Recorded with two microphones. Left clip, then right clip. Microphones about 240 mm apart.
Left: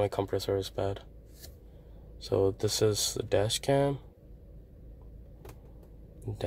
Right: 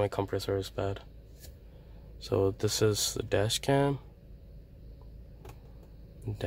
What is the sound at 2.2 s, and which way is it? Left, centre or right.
Speech, centre.